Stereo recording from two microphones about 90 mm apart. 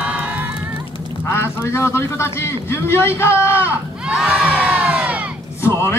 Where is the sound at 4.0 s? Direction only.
10° right (ahead or behind).